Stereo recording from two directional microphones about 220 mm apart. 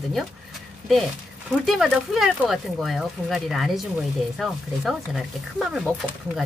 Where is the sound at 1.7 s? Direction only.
Centre (ahead or behind).